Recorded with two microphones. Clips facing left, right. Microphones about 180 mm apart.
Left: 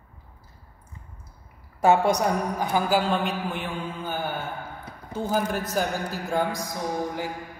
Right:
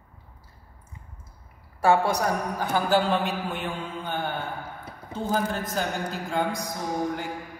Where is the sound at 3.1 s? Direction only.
Centre (ahead or behind).